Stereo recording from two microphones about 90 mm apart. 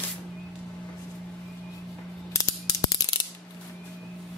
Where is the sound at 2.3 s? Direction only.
35° left (ahead or behind).